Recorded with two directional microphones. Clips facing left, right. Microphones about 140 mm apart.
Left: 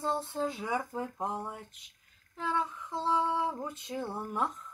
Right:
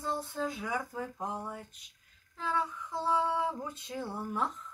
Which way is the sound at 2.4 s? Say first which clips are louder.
Left 1 dB; 20° left (ahead or behind).